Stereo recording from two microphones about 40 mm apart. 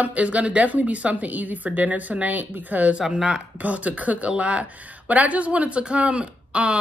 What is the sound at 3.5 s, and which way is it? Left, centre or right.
Speech, right.